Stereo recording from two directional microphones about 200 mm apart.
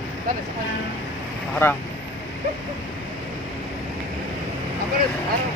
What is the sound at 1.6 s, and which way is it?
Speech, 10° left (ahead or behind).